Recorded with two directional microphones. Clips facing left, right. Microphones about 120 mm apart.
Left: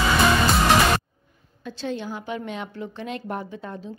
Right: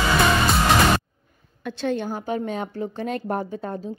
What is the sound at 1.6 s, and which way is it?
A woman's voice, 60° right (ahead or behind).